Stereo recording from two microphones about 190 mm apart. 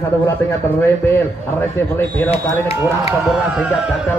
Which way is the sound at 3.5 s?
5° right (ahead or behind).